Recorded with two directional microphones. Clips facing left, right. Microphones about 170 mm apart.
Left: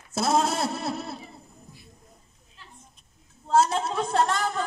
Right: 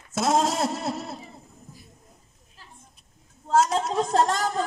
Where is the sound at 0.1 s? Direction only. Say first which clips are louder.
Right 1 dB; 30° left (ahead or behind).